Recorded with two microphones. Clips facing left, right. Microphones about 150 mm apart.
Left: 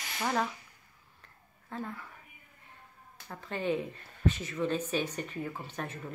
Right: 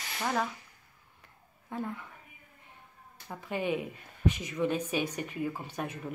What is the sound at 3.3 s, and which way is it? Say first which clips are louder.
A woman's voice: even; 10° right (ahead or behind).